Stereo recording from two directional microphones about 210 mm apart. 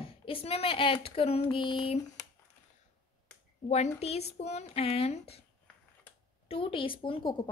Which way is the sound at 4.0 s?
30° left (ahead or behind).